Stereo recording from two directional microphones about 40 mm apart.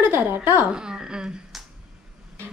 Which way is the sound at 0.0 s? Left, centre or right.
Right.